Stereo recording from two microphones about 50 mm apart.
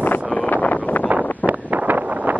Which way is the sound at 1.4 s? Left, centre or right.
Right.